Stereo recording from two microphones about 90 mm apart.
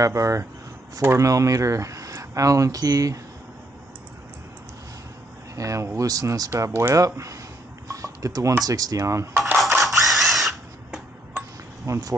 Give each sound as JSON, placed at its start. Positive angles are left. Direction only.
{"t": 0.0, "sound": "speech", "side_deg": -35}
{"t": 5.6, "sound": "speech", "side_deg": -35}
{"t": 6.5, "sound": "speech", "side_deg": -30}
{"t": 9.8, "sound": "drill", "side_deg": 0}
{"t": 11.3, "sound": "a sound", "side_deg": -35}